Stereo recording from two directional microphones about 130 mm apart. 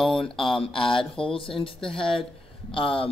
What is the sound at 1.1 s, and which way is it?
A man's voice, 45° left (ahead or behind).